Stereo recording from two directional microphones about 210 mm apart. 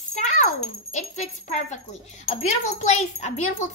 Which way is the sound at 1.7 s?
35° left (ahead or behind).